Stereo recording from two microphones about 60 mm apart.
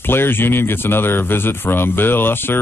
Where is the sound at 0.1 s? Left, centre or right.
Left.